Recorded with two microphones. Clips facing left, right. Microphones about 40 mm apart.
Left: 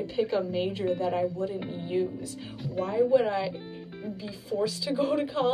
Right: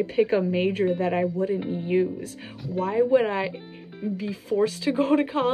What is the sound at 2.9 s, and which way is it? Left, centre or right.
Speech, right.